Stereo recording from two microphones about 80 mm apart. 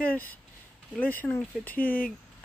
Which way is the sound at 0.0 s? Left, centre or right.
Left.